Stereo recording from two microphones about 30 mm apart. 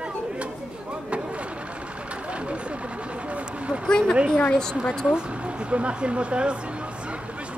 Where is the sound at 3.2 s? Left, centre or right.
Right.